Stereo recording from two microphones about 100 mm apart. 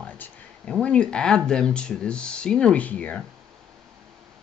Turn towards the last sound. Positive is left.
turn(degrees=15)  # may be behind; listen again after turning